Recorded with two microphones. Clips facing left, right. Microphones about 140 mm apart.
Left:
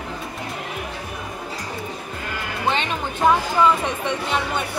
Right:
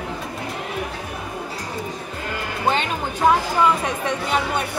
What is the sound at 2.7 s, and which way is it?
Music, 5° right (ahead or behind).